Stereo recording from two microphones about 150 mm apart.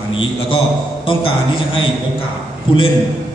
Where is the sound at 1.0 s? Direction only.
35° left (ahead or behind).